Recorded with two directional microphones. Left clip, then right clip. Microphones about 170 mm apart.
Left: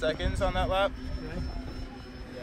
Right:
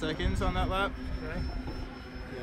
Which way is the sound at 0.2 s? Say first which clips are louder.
Left 3 dB; 40° right (ahead or behind).